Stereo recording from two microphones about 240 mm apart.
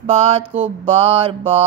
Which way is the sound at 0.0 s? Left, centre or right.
Right.